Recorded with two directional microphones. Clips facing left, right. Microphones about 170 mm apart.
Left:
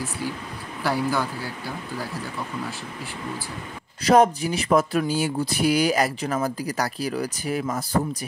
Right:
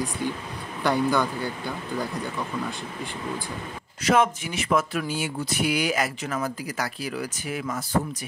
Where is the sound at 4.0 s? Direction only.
35° left (ahead or behind).